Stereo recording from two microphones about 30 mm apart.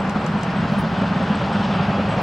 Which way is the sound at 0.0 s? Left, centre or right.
Centre.